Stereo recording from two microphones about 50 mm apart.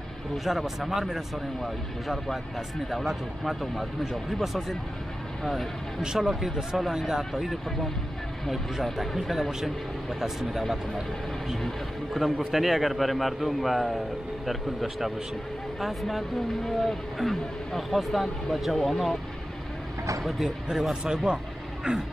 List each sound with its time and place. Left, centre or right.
0.5 s speech: centre
20.2 s speech: centre
20.9 s a man's voice: centre